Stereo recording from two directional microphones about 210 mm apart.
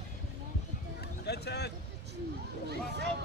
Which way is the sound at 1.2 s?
50° left (ahead or behind).